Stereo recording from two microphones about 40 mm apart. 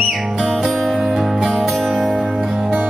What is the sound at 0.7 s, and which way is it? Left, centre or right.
Music, centre.